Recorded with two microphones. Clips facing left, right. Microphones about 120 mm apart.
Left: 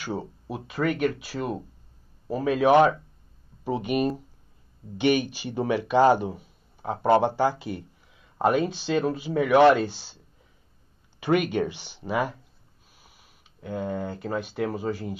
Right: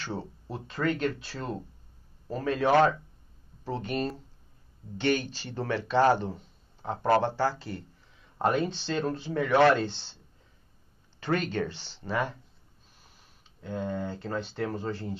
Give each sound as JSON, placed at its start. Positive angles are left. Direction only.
{"t": 0.0, "sound": "speech", "side_deg": 10}
{"t": 11.1, "sound": "speech", "side_deg": 15}